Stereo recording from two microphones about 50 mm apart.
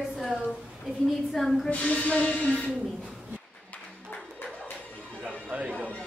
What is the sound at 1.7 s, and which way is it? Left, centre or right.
Speech, left.